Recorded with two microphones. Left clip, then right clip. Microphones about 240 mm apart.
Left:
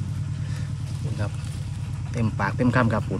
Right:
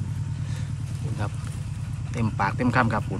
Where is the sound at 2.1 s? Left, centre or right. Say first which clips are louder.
Right 1 dB; centre.